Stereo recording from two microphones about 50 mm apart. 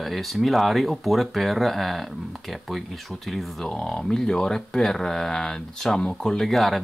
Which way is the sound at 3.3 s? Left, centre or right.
Centre.